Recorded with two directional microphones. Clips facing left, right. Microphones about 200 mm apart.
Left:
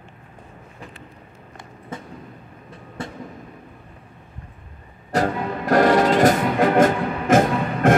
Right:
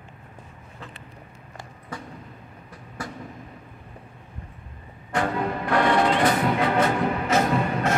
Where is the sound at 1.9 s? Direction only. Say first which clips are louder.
Left 2 dB; 20° left (ahead or behind).